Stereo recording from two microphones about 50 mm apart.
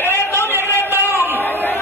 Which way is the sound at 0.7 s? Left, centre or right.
Right.